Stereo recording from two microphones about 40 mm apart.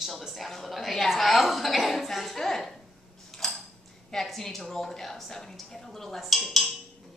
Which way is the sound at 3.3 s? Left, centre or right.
Centre.